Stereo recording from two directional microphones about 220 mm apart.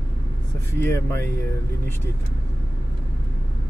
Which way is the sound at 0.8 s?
10° left (ahead or behind).